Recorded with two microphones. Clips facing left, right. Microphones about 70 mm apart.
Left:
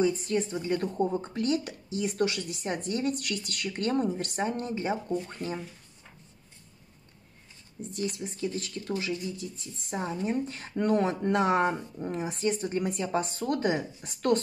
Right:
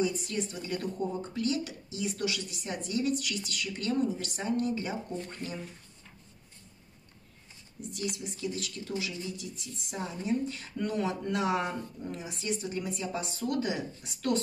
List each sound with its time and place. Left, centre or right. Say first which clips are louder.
0.0 s a woman's voice: left 5 dB; left
7.8 s a woman's voice: left 3 dB; left